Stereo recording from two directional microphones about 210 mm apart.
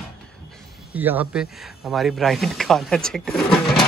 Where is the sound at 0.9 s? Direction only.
10° right (ahead or behind).